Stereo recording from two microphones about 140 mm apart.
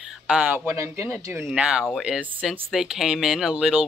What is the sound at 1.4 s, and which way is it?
Speech, 5° right (ahead or behind).